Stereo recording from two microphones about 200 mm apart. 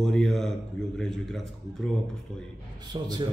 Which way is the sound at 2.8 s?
20° right (ahead or behind).